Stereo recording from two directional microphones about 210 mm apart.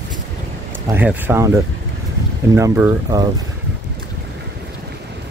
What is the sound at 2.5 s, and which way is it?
Speech, 10° right (ahead or behind).